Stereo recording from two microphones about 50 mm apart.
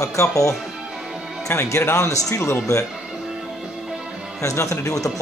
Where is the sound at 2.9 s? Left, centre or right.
Centre.